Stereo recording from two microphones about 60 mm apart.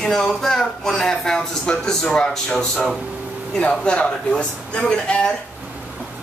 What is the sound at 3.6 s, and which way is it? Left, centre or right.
Speech, left.